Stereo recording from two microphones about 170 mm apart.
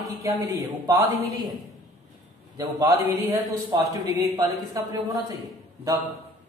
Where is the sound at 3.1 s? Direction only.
20° right (ahead or behind).